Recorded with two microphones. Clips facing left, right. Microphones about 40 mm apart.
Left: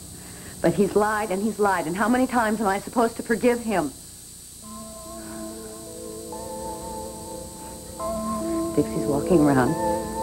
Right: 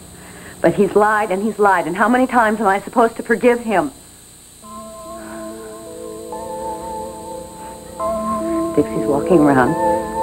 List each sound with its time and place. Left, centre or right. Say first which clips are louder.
0.6 s speech: right 7 dB; right
5.1 s music: right 5 dB; right